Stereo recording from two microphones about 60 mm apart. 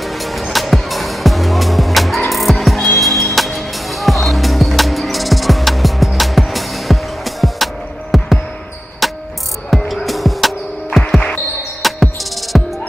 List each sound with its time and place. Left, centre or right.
0.0 s music: centre
11.1 s basketball bounce: centre
11.8 s music: centre